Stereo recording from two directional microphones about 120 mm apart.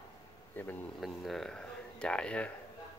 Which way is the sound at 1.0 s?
Centre (ahead or behind).